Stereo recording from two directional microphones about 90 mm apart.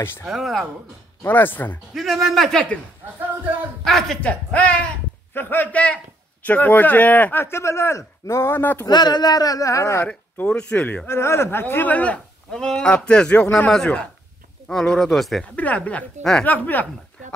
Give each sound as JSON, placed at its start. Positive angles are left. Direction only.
{"t": 0.2, "sound": "a man's voice", "side_deg": 0}
{"t": 1.2, "sound": "speech", "side_deg": 20}
{"t": 2.0, "sound": "a man's voice", "side_deg": 0}
{"t": 3.8, "sound": "a man's voice", "side_deg": 5}
{"t": 4.2, "sound": "a man's voice", "side_deg": 15}
{"t": 8.8, "sound": "speech", "side_deg": 50}
{"t": 10.0, "sound": "a man's voice", "side_deg": 15}
{"t": 11.1, "sound": "a man's voice", "side_deg": 30}
{"t": 15.5, "sound": "a man's voice", "side_deg": 15}